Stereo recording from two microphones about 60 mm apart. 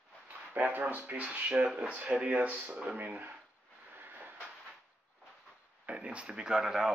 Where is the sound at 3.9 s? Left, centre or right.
Right.